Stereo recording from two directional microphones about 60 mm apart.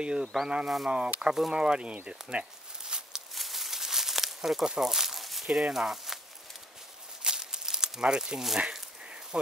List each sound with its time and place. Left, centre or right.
0.0 s speech: centre
3.3 s crumpling: centre
7.2 s crumpling: centre
9.3 s speech: centre